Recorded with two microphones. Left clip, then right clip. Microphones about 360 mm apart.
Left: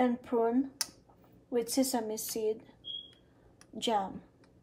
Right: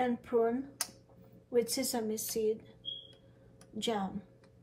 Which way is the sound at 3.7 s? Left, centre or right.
Centre.